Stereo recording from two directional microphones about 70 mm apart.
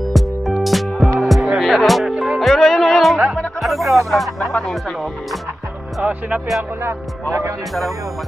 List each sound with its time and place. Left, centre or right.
0.0 s music: centre
4.1 s speech: centre
6.0 s speech: centre
6.8 s speech: right